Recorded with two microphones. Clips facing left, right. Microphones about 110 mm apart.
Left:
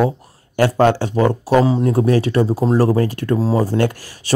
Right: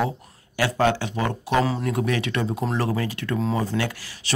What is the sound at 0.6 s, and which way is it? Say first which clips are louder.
Speech: left 7 dB; 45° left (ahead or behind).